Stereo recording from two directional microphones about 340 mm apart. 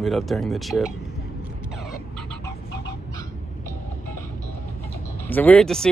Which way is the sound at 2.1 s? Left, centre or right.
Centre.